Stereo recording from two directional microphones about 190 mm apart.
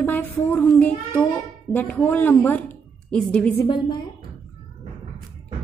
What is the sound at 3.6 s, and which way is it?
Speech, 25° left (ahead or behind).